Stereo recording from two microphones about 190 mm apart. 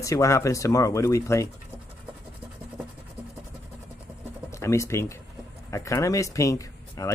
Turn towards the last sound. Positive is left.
turn(degrees=15)  # may be behind; listen again after turning